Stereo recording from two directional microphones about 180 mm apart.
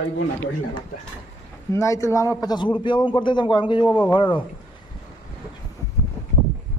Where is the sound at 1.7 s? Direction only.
15° left (ahead or behind).